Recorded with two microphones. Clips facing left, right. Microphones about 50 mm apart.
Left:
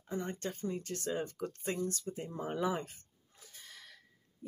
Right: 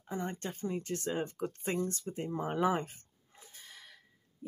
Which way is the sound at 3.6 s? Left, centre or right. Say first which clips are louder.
Even; centre.